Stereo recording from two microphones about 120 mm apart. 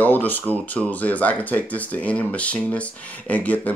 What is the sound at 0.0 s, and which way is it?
Speech, 15° left (ahead or behind).